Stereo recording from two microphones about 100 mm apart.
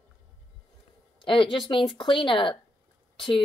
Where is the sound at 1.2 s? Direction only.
55° left (ahead or behind).